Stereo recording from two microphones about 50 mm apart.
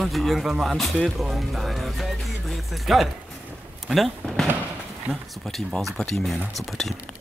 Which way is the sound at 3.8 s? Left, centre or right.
Centre.